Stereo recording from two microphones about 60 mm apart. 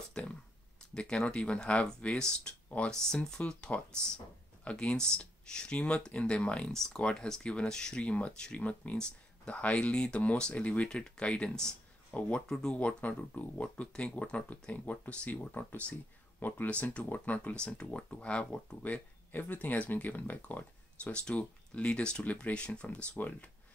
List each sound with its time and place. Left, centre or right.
0.2 s speech: centre
6.7 s speech: centre
8.9 s a sound: centre
9.5 s speech: left